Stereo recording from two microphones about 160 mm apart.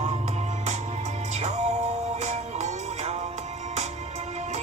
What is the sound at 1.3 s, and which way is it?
Music, 45° right (ahead or behind).